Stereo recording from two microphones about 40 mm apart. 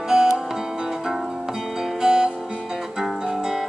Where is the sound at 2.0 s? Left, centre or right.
Centre.